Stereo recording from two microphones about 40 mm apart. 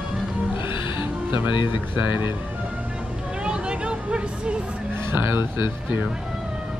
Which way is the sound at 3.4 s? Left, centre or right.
Right.